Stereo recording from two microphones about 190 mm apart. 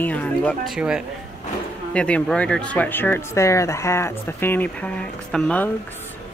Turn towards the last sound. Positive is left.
turn(degrees=5)  # may be behind; listen again after turning